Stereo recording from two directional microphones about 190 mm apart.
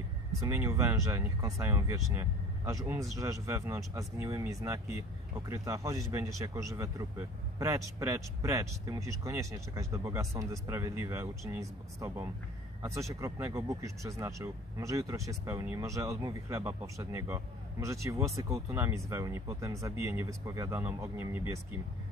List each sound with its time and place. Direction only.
0.5 s speech: 15° right (ahead or behind)